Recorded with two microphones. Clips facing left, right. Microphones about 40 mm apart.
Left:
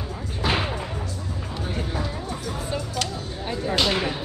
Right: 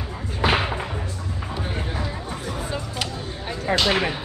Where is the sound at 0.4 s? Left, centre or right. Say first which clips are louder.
Right 4 dB; right.